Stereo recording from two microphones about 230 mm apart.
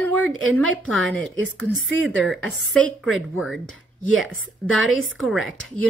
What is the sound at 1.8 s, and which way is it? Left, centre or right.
Speech, right.